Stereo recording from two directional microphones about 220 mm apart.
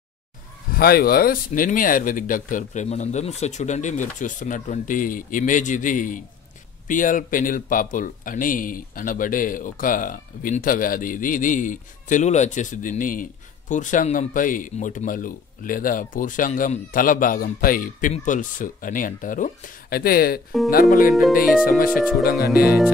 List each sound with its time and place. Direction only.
0.7 s speech: 45° left (ahead or behind)
21.1 s speech: centre (ahead or behind)
21.6 s speech: 40° left (ahead or behind)